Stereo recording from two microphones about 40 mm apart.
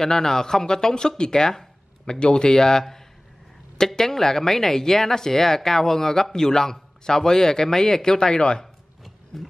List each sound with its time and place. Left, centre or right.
0.0 s speech: centre
9.0 s roaring cats: centre